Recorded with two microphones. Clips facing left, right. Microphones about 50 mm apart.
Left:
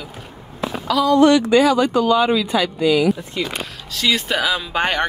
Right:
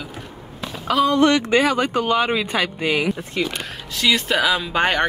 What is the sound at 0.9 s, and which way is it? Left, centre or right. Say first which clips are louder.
Speech: left 3 dB; right.